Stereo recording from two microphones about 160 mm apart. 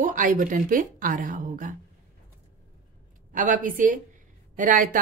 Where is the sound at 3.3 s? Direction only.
55° right (ahead or behind).